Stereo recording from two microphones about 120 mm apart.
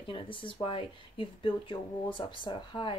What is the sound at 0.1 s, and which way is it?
Speech, 45° left (ahead or behind).